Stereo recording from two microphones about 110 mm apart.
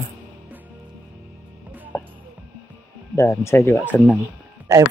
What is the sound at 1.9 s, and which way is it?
Music, 20° left (ahead or behind).